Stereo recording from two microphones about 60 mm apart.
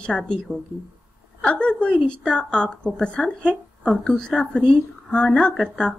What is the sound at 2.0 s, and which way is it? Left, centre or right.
A woman's voice, centre.